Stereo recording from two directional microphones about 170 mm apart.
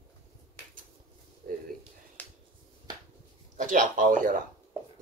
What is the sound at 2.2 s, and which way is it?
Finger snapping, 10° left (ahead or behind).